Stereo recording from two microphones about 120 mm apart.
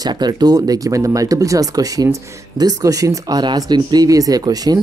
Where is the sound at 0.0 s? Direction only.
35° right (ahead or behind).